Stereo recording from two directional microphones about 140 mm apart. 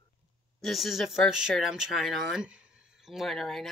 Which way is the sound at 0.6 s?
Centre (ahead or behind).